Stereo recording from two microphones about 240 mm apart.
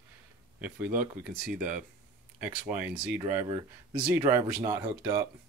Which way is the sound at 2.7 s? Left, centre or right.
Centre.